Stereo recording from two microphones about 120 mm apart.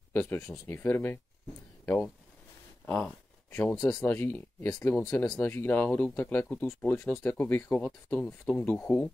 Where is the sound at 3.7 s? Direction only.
30° left (ahead or behind).